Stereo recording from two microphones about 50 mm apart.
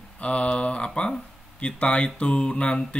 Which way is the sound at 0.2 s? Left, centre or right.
Left.